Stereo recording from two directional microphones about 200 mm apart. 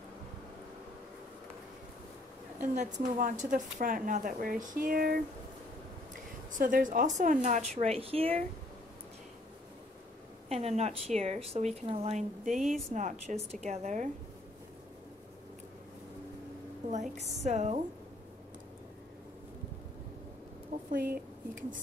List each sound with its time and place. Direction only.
2.7 s a woman's voice: 35° right (ahead or behind)
6.6 s a woman's voice: 45° right (ahead or behind)
10.5 s a woman's voice: 35° right (ahead or behind)
16.9 s a woman's voice: 35° right (ahead or behind)
20.7 s a sound: 45° right (ahead or behind)